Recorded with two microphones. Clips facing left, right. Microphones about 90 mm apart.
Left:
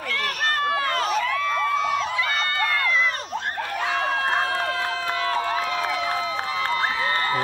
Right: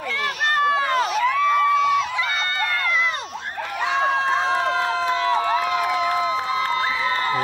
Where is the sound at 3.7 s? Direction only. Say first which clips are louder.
Right 4 dB; 20° right (ahead or behind).